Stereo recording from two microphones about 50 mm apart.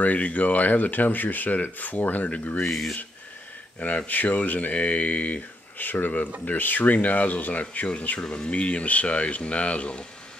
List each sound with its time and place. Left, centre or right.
0.0 s speech: left
2.6 s speech: centre
3.8 s speech: left